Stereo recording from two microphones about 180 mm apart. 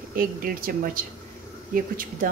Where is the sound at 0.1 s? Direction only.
50° right (ahead or behind).